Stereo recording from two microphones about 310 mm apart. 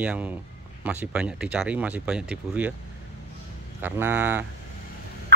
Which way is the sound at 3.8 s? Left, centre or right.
Centre.